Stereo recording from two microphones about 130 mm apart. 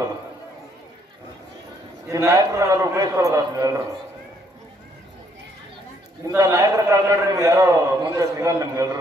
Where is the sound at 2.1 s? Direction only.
25° right (ahead or behind).